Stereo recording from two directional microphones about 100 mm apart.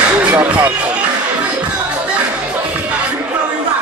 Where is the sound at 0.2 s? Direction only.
15° right (ahead or behind).